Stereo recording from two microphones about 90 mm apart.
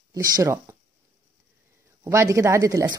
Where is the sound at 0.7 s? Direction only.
35° right (ahead or behind).